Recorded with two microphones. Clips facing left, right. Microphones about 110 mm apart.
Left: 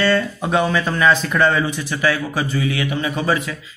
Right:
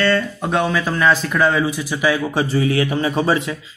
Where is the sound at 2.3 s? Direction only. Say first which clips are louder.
Right 4 dB; 30° right (ahead or behind).